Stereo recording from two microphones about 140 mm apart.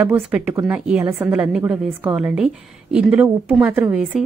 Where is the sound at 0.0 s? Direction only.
10° right (ahead or behind).